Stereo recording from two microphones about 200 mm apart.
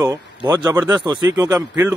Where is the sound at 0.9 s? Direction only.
20° right (ahead or behind).